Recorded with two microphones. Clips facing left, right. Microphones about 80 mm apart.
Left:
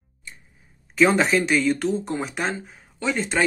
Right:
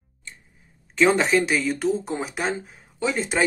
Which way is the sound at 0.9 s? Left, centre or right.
Centre.